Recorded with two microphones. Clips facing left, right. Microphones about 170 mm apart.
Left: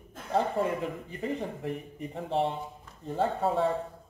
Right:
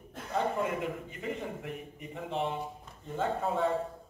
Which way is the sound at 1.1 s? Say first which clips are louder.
Left 4 dB; 35° left (ahead or behind).